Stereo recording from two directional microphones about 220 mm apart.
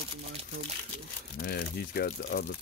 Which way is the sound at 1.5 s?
45° left (ahead or behind).